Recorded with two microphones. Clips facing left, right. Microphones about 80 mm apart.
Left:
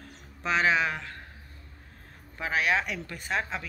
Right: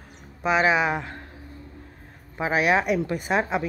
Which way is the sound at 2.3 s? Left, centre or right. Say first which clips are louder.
Right 6 dB; centre.